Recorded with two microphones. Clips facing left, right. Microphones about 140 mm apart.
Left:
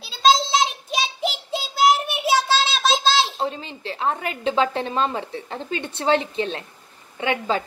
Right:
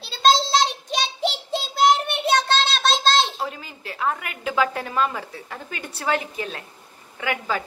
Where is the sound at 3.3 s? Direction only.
25° left (ahead or behind).